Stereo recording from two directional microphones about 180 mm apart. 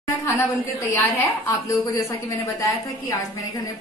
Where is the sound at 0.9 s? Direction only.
10° left (ahead or behind).